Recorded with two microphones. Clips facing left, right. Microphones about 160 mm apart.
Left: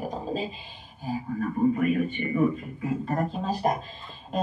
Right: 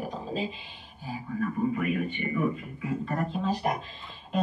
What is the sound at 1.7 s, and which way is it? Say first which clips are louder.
Speech: left 4 dB; 40° left (ahead or behind).